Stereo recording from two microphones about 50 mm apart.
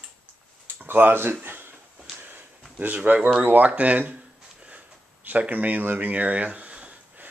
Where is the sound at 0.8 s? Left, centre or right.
Right.